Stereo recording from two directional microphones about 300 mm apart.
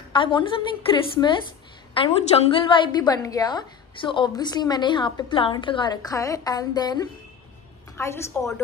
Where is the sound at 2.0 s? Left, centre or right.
Centre.